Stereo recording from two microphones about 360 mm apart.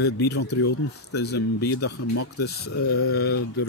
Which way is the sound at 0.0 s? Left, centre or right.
Left.